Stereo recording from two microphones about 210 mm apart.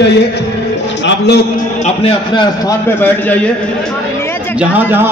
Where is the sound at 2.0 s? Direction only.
25° left (ahead or behind).